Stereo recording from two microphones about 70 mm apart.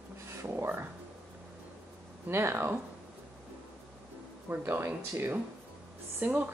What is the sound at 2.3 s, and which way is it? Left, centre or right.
Speech, right.